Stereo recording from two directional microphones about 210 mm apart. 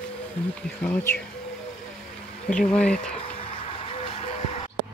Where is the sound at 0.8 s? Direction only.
5° left (ahead or behind).